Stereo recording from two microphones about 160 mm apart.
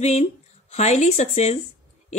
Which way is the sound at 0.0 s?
45° left (ahead or behind).